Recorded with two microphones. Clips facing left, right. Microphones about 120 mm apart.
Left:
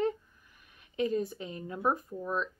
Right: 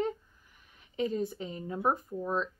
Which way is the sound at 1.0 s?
30° right (ahead or behind).